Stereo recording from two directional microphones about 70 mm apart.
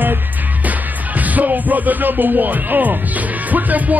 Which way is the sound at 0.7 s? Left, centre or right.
Right.